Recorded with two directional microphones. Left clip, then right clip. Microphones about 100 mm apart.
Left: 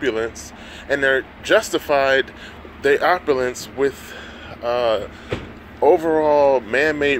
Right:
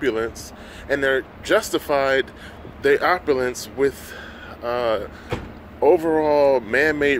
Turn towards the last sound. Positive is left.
turn(degrees=-30)  # may be behind; listen again after turning